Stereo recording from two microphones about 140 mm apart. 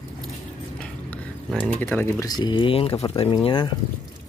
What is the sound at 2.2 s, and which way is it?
Speech, 30° left (ahead or behind).